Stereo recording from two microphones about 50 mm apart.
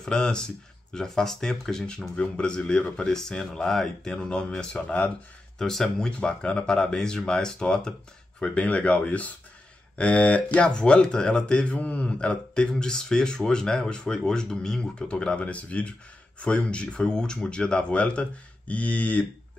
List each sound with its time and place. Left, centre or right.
0.0 s speech: centre
5.6 s speech: centre; by 19.2 s left